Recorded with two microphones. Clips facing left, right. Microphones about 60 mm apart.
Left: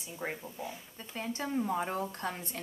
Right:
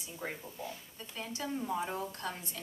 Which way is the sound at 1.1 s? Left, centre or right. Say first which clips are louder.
Left 4 dB; left.